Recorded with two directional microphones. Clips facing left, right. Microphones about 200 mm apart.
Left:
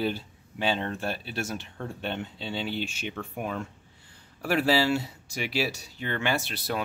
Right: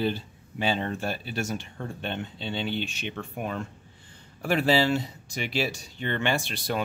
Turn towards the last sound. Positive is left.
turn(degrees=5)  # may be behind; listen again after turning